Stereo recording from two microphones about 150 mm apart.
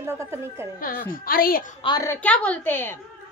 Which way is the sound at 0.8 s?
70° left (ahead or behind).